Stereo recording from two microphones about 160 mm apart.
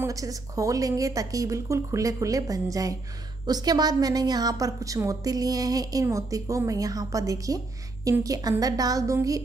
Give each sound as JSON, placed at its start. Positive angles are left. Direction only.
{"t": 0.0, "sound": "a woman's voice", "side_deg": -20}